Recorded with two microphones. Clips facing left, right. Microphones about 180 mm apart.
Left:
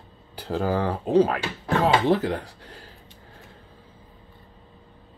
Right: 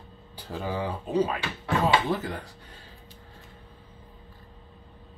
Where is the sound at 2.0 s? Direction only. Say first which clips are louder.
Left 8 dB; 80° left.